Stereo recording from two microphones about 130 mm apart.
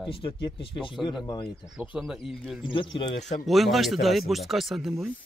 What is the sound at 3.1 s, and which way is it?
Speech, 65° left (ahead or behind).